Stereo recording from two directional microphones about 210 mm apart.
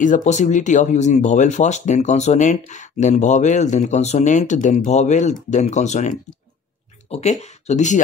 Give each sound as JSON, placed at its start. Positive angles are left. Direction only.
{"t": 0.0, "sound": "speech", "side_deg": 35}